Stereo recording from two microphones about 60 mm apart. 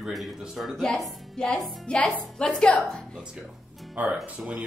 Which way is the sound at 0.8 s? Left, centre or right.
Centre.